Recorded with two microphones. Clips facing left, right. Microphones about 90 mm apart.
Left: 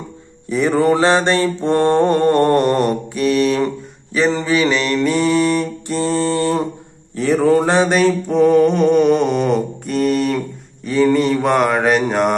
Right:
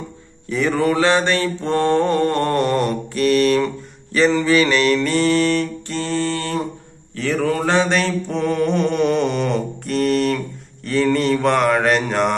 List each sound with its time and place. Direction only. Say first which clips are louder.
0.5 s mantra: left 4 dB; 25° left (ahead or behind)
3.1 s mantra: even; 5° left (ahead or behind)